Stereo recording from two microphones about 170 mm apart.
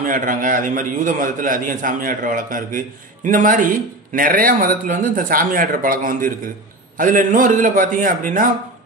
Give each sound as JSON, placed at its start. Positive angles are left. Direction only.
{"t": 0.0, "sound": "a man's voice", "side_deg": -50}